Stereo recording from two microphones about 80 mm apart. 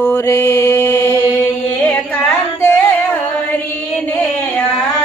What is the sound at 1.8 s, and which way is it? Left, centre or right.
Carnatic music, left.